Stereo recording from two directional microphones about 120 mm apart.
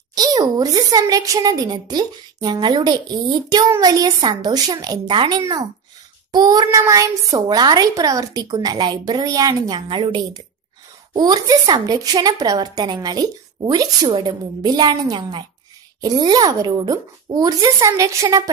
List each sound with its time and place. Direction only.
0.1 s a woman's voice: 30° right (ahead or behind)